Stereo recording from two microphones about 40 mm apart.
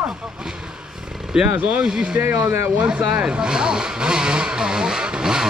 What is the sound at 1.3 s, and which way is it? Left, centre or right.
Speech, right.